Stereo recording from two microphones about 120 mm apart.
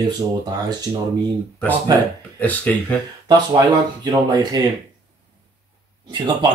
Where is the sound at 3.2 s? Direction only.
40° right (ahead or behind).